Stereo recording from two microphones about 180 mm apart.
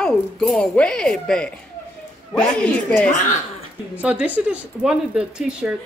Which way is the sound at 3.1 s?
45° left (ahead or behind).